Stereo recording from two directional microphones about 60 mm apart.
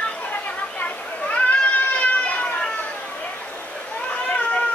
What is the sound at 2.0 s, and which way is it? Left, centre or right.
Children playing, left.